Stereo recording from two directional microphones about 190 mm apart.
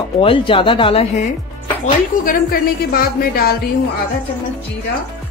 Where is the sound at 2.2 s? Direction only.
50° left (ahead or behind).